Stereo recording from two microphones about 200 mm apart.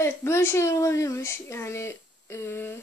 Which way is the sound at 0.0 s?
10° left (ahead or behind).